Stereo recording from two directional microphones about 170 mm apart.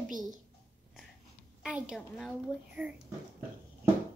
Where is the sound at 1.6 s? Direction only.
5° right (ahead or behind).